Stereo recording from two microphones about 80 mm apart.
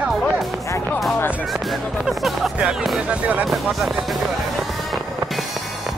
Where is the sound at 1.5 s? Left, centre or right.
Centre.